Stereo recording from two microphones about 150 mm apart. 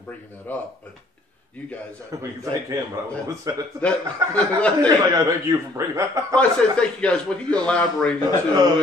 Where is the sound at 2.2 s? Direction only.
20° right (ahead or behind).